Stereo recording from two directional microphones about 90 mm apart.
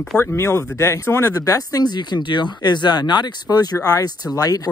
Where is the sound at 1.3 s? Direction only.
40° left (ahead or behind).